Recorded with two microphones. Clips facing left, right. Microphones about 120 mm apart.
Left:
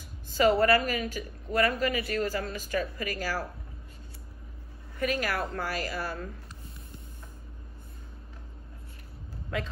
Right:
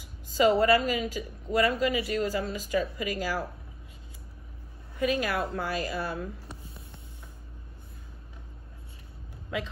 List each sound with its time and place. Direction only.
0.4 s a woman's voice: 20° right (ahead or behind)
4.9 s a woman's voice: 15° right (ahead or behind)